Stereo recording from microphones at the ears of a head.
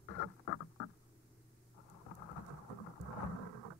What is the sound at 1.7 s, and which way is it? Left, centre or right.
Thunder, left.